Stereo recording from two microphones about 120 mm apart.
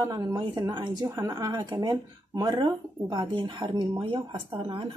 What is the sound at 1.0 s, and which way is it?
Speech, 30° right (ahead or behind).